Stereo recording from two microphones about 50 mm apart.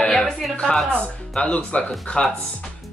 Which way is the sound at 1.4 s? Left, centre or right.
Left.